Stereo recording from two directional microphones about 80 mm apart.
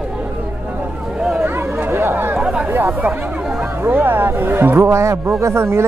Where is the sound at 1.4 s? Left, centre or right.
Right.